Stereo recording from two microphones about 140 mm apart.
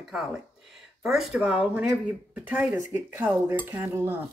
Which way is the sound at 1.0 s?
5° right (ahead or behind).